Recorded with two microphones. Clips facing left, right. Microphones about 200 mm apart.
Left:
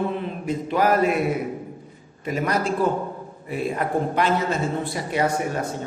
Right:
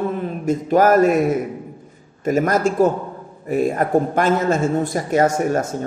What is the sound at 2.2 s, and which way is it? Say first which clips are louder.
Speech: right 6 dB; 45° right (ahead or behind).